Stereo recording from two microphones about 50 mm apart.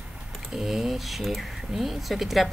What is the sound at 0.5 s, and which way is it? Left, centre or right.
A woman's voice, centre.